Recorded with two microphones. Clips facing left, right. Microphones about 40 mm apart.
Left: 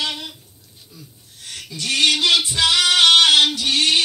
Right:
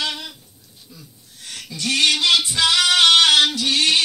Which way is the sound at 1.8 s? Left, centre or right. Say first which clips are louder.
Even; left.